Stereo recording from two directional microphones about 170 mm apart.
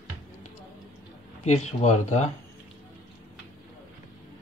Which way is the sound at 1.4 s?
40° left (ahead or behind).